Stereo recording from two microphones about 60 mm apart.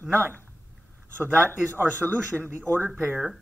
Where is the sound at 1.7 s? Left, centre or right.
Right.